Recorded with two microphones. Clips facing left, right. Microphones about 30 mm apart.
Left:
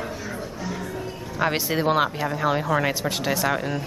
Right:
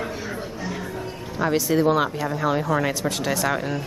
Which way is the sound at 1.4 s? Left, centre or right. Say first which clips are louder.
Right 3 dB; left.